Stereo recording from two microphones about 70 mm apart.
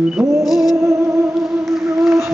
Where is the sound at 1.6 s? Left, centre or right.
Centre.